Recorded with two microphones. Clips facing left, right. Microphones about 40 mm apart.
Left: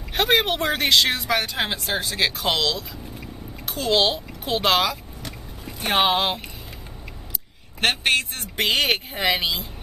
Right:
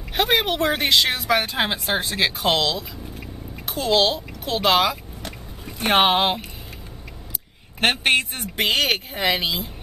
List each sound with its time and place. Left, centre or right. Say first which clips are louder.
0.1 s speech: even; centre
1.5 s speech: right 2 dB; centre
2.1 s a woman's voice: right 2 dB; centre
5.8 s speech: right 3 dB; right
7.8 s a woman's voice: right 2 dB; right
8.6 s speech: even; centre